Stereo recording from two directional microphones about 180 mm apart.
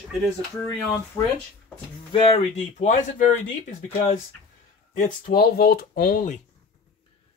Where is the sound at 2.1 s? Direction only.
30° left (ahead or behind); by 6.4 s 50° left (ahead or behind).